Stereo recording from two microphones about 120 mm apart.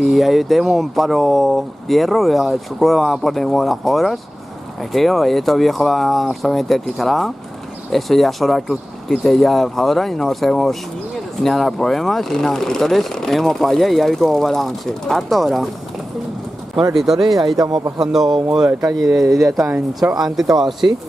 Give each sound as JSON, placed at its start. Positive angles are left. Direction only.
{"t": 0.0, "sound": "speech", "side_deg": 0}
{"t": 16.9, "sound": "speech", "side_deg": -5}
{"t": 17.6, "sound": "speech", "side_deg": -35}
{"t": 17.9, "sound": "speech", "side_deg": -5}